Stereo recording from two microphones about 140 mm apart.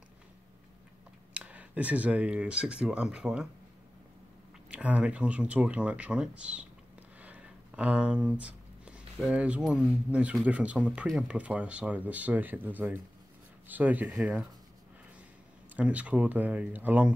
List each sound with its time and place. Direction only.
1.3 s speech: 10° right (ahead or behind)
4.6 s speech: 10° right (ahead or behind)
15.7 s speech: 10° right (ahead or behind)